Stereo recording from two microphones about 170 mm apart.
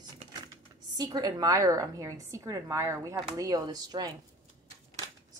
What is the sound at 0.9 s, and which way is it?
A woman's voice, 25° right (ahead or behind).